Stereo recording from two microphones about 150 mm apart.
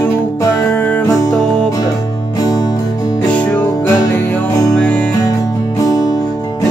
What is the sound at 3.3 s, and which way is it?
Music, 10° left (ahead or behind).